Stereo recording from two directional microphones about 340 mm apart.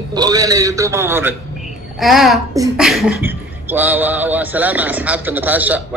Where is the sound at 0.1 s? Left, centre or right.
Centre.